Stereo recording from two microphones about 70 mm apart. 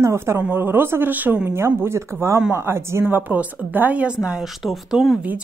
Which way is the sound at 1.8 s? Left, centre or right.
Right.